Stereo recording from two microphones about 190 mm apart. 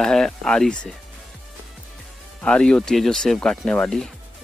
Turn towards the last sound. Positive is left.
turn(degrees=5)  # may be behind; listen again after turning